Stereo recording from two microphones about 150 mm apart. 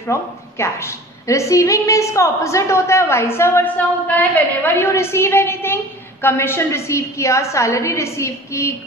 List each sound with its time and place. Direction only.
0.0 s a woman's voice: 20° left (ahead or behind)